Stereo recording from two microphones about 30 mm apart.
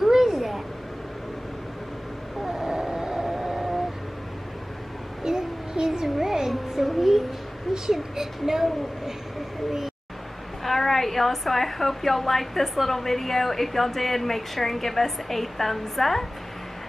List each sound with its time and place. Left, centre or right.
0.0 s a sound: centre
2.4 s vehicle: centre
5.2 s child singing: right
6.0 s a sound: centre
6.7 s child singing: centre
7.7 s speech: centre
10.6 s a woman's voice: centre